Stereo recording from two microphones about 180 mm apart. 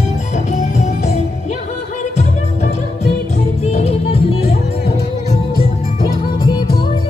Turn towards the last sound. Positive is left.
turn(degrees=35)  # may be behind; listen again after turning